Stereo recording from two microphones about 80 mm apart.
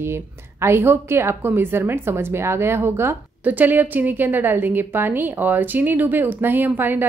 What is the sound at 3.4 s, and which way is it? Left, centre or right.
A woman's voice, right.